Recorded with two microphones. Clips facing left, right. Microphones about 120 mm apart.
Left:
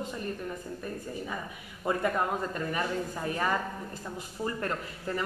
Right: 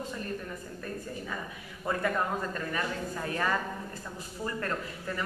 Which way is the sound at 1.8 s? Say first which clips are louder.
Left 2 dB; 15° left (ahead or behind).